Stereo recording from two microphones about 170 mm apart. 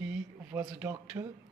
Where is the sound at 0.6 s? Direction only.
15° right (ahead or behind).